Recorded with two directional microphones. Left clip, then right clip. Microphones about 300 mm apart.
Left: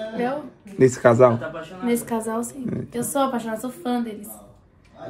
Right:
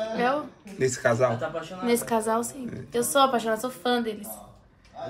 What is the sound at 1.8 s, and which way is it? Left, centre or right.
Speech, centre.